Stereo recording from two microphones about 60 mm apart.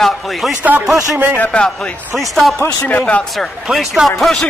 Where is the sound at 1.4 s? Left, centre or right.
Centre.